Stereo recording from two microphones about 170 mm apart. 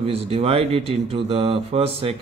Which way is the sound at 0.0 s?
35° right (ahead or behind).